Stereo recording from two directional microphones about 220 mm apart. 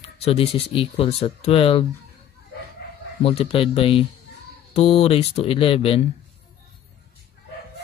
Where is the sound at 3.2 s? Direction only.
25° left (ahead or behind).